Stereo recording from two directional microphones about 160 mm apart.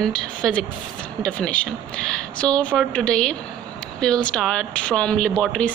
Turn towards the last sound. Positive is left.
turn(degrees=5)  # may be behind; listen again after turning